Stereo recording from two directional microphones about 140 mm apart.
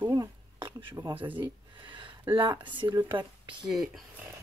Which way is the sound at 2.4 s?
35° right (ahead or behind).